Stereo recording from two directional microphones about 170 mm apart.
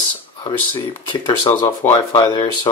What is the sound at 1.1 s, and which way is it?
Speech, 25° left (ahead or behind).